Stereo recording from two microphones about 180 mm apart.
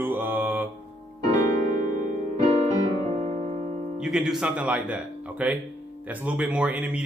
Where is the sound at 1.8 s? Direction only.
45° right (ahead or behind).